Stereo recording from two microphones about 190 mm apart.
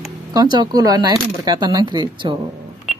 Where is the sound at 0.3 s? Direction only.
20° right (ahead or behind).